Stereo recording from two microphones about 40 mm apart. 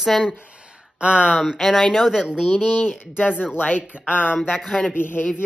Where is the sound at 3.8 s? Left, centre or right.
Right.